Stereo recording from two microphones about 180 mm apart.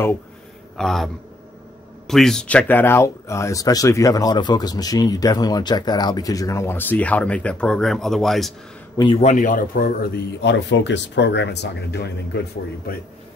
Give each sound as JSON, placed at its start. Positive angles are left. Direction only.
{"t": 0.7, "sound": "a man's voice", "side_deg": 0}
{"t": 8.9, "sound": "a man's voice", "side_deg": 25}
{"t": 9.2, "sound": "speech", "side_deg": 45}